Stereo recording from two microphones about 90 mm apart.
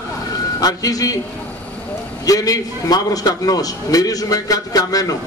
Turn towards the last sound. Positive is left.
turn(degrees=40)  # may be behind; listen again after turning